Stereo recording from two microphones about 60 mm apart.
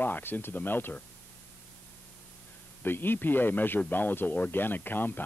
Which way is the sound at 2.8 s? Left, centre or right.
Left.